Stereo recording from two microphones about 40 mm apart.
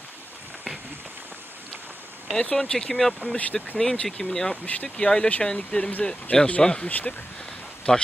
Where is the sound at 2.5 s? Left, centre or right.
Centre.